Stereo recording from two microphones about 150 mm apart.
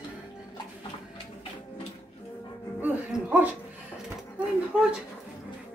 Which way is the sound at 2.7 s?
10° right (ahead or behind).